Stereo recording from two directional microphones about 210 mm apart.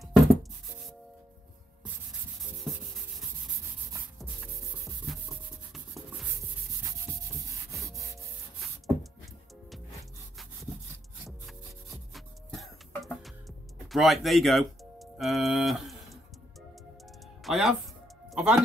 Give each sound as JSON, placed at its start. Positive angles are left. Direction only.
{"t": 0.0, "sound": "music", "side_deg": 0}
{"t": 7.7, "sound": "rub", "side_deg": -15}
{"t": 8.5, "sound": "music", "side_deg": 0}
{"t": 11.2, "sound": "music", "side_deg": 0}
{"t": 13.8, "sound": "speech", "side_deg": 0}
{"t": 17.4, "sound": "speech", "side_deg": 0}